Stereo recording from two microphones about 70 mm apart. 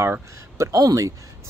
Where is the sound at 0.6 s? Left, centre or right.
Right.